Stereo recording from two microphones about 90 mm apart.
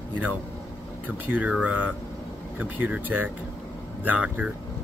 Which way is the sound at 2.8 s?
20° right (ahead or behind).